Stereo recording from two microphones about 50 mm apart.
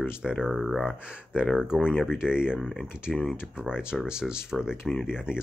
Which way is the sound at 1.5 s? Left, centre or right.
Centre.